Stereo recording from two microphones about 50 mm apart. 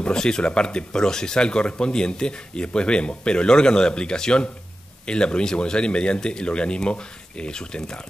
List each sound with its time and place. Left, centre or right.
0.0 s speech: centre